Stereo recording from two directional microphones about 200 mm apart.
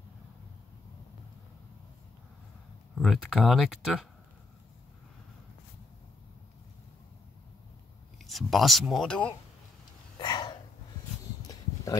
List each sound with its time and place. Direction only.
3.0 s speech: centre (ahead or behind)
8.2 s speech: centre (ahead or behind)
10.1 s a sound: 20° left (ahead or behind)